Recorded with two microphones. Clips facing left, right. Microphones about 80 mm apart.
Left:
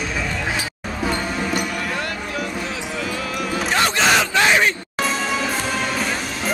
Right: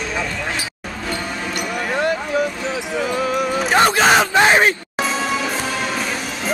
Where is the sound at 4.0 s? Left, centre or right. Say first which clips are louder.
Right 4 dB; right.